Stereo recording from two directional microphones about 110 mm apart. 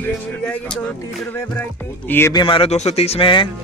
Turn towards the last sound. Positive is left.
turn(degrees=50)  # may be behind; listen again after turning